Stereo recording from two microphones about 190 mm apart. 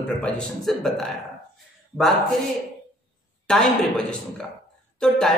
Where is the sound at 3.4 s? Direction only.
5° left (ahead or behind).